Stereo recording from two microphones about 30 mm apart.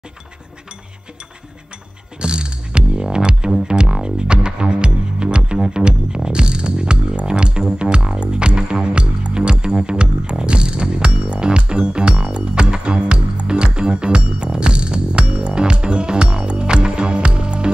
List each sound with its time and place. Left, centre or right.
2.1 s music: right